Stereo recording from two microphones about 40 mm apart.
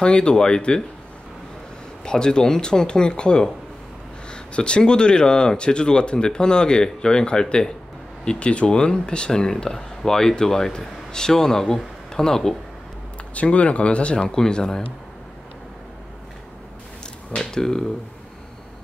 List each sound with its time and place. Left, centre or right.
0.0 s speech: left
2.0 s speech: centre
13.3 s speech: left
14.3 s speech: centre
17.4 s speech: centre